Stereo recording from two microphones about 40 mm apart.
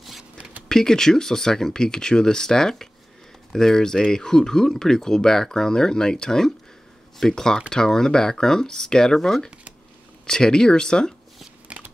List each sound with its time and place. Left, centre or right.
0.2 s a sound: right
0.7 s speech: centre
11.6 s shuffling cards: right